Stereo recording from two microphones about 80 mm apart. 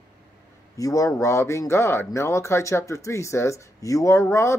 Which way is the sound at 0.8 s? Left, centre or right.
Left.